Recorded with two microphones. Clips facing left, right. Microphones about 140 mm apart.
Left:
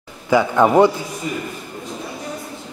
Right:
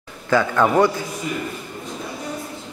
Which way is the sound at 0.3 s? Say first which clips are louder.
Left 3 dB; 15° left (ahead or behind).